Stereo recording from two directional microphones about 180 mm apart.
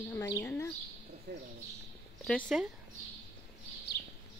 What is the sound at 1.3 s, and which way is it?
Speech, 65° right (ahead or behind).